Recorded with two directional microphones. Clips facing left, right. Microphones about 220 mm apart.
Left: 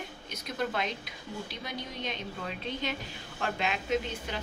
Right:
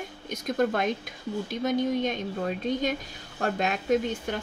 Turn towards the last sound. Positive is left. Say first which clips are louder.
# right 6 dB
turn(degrees=-50)  # may be behind; listen again after turning